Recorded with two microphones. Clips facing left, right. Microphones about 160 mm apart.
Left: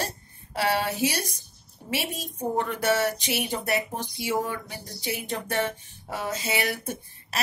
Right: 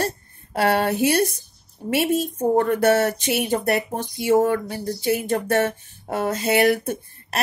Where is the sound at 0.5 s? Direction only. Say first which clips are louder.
Right 6 dB; 55° right (ahead or behind).